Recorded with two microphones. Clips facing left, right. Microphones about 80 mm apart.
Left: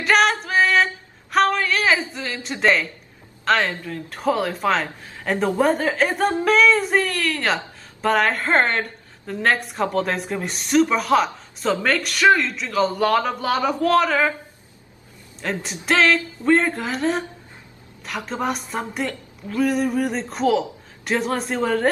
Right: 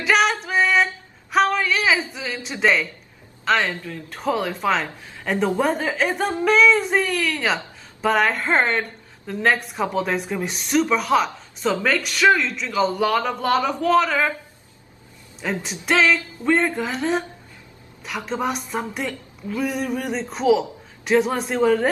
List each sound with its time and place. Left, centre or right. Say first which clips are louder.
0.0 s music: left 1 dB; centre
1.3 s a sound: even; centre
2.6 s speech: left 1 dB; centre
15.6 s speech: left 1 dB; centre